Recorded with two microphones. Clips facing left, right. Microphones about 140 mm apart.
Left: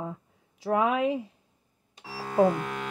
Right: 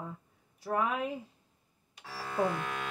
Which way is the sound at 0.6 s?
90° left.